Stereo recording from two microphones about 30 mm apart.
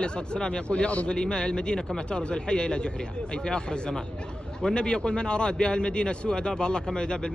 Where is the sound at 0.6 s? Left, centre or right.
Left.